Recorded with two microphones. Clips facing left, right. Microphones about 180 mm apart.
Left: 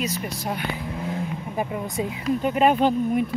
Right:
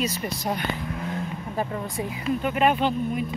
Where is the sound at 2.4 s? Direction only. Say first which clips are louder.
Left 3 dB; 35° left (ahead or behind).